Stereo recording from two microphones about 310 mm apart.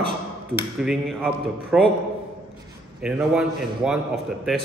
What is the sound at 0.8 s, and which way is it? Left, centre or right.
A man's voice, centre.